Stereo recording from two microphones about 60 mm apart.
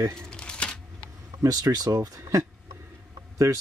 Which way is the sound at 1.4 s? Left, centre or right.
Right.